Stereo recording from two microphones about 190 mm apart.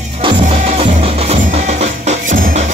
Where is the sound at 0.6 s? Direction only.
35° right (ahead or behind).